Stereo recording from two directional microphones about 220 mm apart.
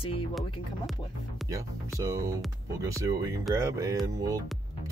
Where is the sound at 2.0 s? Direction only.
15° right (ahead or behind).